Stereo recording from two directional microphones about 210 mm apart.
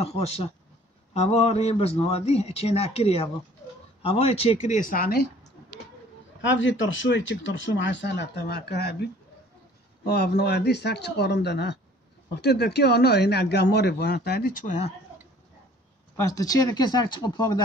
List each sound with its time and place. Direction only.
0.0 s a man's voice: 30° left (ahead or behind)
6.4 s speech: 60° left (ahead or behind); by 14.9 s 40° left (ahead or behind)
16.3 s speech: 15° left (ahead or behind)